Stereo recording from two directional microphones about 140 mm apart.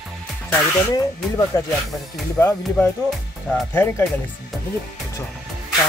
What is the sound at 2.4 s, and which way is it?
Speech, 15° left (ahead or behind).